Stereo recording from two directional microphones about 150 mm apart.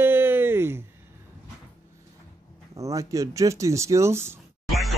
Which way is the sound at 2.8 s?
20° right (ahead or behind).